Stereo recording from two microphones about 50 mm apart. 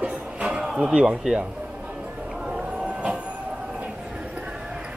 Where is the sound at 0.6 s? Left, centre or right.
Centre.